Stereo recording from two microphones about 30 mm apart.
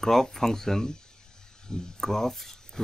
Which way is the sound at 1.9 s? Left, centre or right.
Centre.